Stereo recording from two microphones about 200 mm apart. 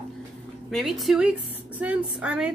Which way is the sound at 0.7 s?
Centre (ahead or behind).